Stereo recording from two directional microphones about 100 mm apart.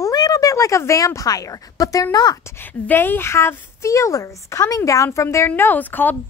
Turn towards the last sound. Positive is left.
turn(degrees=15)  # may be behind; listen again after turning